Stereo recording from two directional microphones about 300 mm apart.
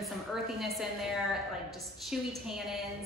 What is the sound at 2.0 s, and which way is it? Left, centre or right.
Speech, centre.